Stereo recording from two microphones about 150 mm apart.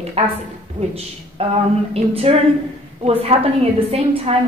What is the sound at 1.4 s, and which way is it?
A woman's voice, 40° right (ahead or behind).